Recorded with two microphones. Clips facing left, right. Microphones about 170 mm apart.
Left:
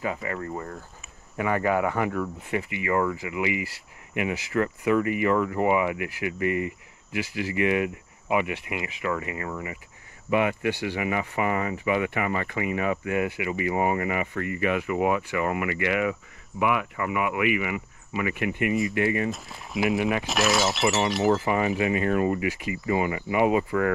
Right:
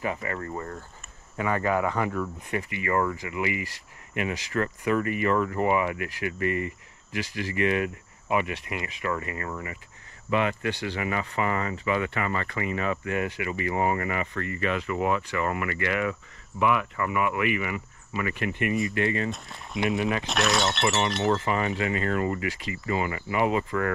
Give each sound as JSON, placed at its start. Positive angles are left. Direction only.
{"t": 0.0, "sound": "speech", "side_deg": 25}
{"t": 19.3, "sound": "speech", "side_deg": 0}
{"t": 20.0, "sound": "speech", "side_deg": 20}
{"t": 20.2, "sound": "speech", "side_deg": 0}
{"t": 21.5, "sound": "speech", "side_deg": 20}